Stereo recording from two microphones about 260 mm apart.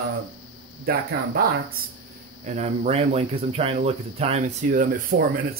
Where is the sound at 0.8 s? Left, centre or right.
Right.